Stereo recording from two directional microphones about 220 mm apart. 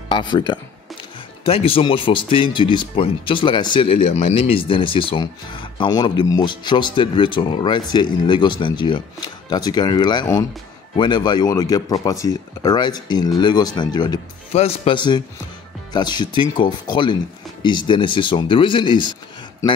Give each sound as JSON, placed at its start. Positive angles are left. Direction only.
{"t": 0.1, "sound": "speech", "side_deg": 20}